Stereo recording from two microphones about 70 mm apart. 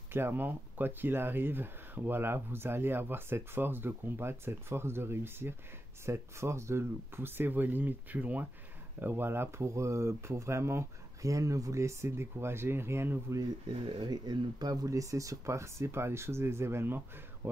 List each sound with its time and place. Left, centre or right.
0.1 s speech: right
11.2 s speech: right
13.4 s speech: right